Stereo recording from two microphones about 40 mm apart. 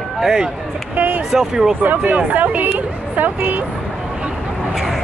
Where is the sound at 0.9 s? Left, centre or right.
Right.